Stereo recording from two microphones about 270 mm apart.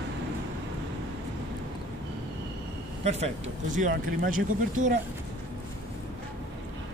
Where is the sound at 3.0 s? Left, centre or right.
Right.